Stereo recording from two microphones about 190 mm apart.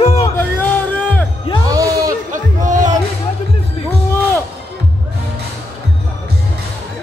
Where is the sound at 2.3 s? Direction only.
40° right (ahead or behind).